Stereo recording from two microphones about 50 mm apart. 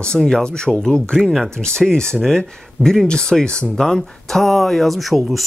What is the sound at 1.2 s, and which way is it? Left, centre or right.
Speech, centre.